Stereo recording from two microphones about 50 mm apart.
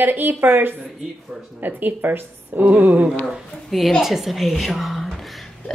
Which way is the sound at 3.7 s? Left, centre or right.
Centre.